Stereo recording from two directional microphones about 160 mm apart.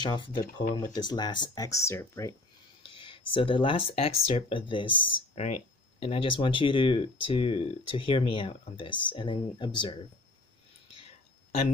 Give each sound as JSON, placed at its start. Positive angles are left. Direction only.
{"t": 0.0, "sound": "speech", "side_deg": 30}
{"t": 2.8, "sound": "speech", "side_deg": 30}